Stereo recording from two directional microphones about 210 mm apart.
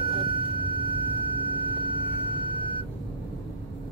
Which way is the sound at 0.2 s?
25° right (ahead or behind).